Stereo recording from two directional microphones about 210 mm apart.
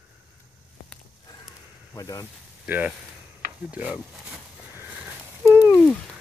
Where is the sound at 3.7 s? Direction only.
5° right (ahead or behind).